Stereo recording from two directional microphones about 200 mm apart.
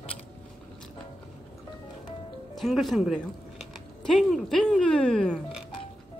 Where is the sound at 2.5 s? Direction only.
Centre (ahead or behind).